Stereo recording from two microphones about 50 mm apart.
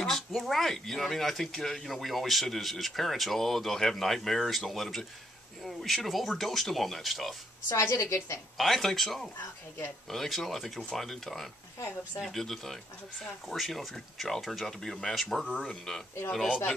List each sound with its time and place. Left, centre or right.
0.0 s speech: centre
7.6 s a woman's voice: left
8.5 s speech: centre